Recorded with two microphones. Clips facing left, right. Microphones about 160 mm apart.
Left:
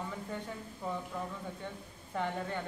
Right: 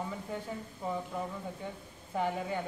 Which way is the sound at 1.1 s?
15° right (ahead or behind).